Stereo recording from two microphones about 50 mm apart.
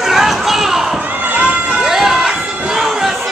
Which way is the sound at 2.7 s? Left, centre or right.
Centre.